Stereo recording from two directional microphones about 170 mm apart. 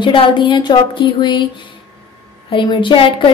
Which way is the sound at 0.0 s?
30° left (ahead or behind).